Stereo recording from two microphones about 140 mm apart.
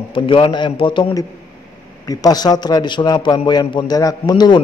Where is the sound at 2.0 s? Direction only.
30° left (ahead or behind).